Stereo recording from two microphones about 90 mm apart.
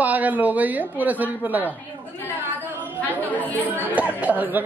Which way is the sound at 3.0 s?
20° left (ahead or behind).